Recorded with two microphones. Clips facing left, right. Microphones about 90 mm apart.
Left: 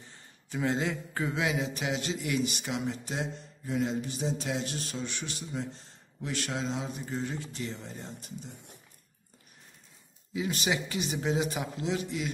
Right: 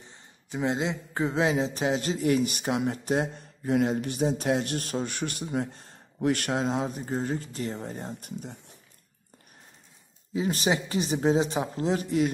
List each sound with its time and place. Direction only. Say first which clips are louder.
0.0 s a man's voice: right 2 dB; 20° right (ahead or behind); by 8.5 s 55° right (ahead or behind)
10.3 s a man's voice: right 5 dB; 35° right (ahead or behind)